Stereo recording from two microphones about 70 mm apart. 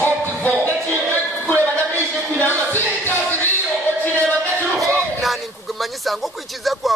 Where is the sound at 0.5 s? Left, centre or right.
Right.